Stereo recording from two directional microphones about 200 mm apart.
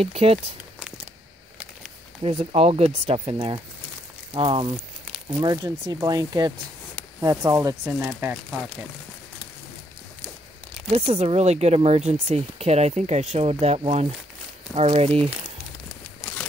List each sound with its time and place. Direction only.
0.0 s speech: 30° right (ahead or behind)
2.2 s speech: 30° right (ahead or behind); by 8.1 s 15° right (ahead or behind)
8.2 s speech: 5° right (ahead or behind)
10.9 s speech: 30° right (ahead or behind)